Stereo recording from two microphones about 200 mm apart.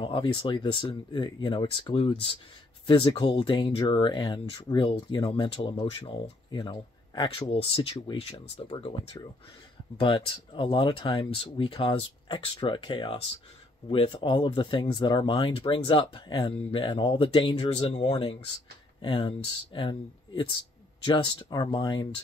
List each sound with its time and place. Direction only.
0.0 s speech: 25° left (ahead or behind)